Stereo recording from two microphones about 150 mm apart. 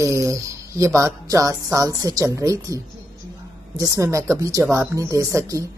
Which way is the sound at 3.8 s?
20° right (ahead or behind).